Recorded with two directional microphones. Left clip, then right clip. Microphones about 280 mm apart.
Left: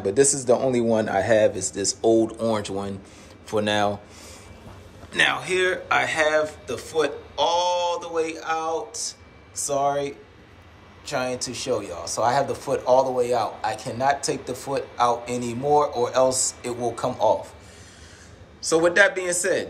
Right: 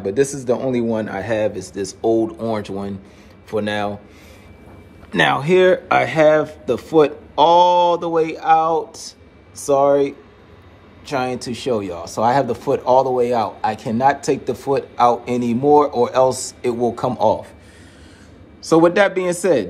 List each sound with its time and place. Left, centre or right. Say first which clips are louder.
0.0 s a man's voice: right 1 dB; centre
5.1 s a man's voice: right 6 dB; centre; by 17.4 s right
18.6 s speech: right 4 dB; centre